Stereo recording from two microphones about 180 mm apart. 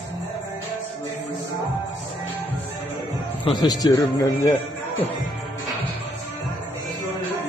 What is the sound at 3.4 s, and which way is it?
A man's voice, 25° left (ahead or behind).